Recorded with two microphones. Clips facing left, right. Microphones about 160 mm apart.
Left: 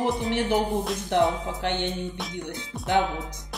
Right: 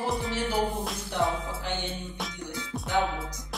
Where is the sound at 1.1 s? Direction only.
65° left (ahead or behind).